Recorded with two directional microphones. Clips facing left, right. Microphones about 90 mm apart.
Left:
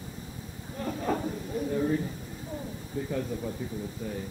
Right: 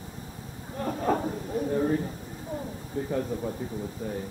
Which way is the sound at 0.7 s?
45° right (ahead or behind).